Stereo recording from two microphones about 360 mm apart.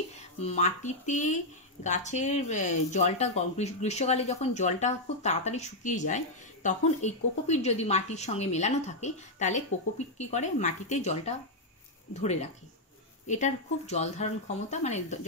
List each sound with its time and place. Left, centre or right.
0.2 s speech: centre